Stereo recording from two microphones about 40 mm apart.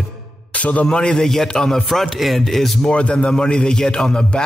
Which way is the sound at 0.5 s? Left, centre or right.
Left.